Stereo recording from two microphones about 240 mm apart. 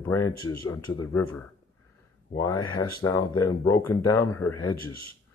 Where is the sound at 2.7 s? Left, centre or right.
Left.